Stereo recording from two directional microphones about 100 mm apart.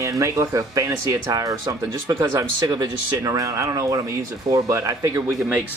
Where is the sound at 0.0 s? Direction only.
30° right (ahead or behind).